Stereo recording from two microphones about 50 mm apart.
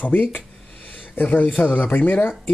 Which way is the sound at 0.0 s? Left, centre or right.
Left.